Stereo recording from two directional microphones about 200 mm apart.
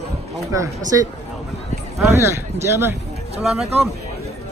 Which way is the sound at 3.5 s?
Centre (ahead or behind).